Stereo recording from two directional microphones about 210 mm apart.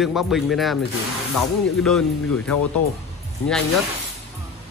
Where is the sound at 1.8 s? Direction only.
5° left (ahead or behind).